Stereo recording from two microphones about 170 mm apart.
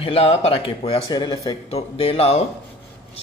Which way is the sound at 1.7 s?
35° left (ahead or behind).